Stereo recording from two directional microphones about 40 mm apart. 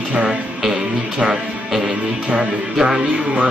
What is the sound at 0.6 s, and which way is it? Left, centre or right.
Music, centre.